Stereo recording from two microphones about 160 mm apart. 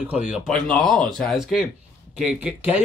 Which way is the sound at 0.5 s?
5° left (ahead or behind).